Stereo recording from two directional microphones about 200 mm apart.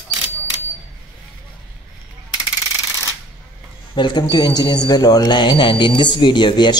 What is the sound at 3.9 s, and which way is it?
Speech, 20° left (ahead or behind).